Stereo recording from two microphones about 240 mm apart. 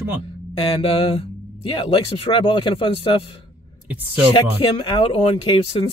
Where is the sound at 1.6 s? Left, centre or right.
Left.